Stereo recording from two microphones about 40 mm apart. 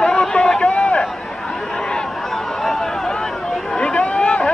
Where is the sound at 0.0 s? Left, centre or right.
Centre.